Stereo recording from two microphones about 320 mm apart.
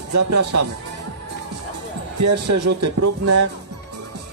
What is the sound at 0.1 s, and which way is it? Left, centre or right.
Speech, right.